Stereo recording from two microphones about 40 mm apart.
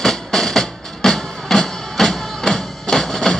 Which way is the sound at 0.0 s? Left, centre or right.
Centre.